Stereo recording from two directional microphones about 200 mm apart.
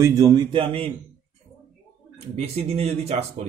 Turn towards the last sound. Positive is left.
turn(degrees=-30)  # may be behind; listen again after turning